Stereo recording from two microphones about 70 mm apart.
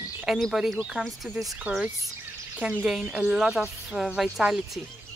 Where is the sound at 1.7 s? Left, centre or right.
Right.